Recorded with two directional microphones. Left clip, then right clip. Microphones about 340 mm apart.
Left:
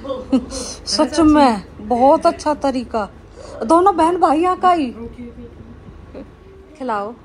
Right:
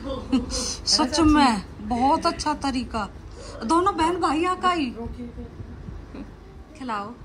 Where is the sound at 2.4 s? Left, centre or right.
Centre.